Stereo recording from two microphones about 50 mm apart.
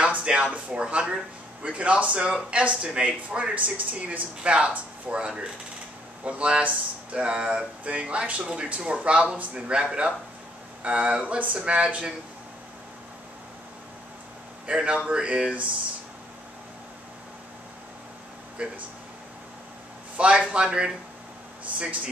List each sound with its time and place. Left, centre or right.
0.0 s a sound: right
0.7 s speech: centre
14.7 s speech: right
18.6 s speech: right
20.2 s speech: right